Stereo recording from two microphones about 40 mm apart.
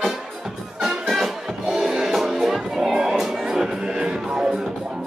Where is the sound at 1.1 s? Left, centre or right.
Centre.